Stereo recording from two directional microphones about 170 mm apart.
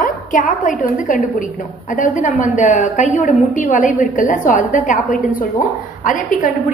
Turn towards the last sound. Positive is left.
turn(degrees=50)  # may be behind; listen again after turning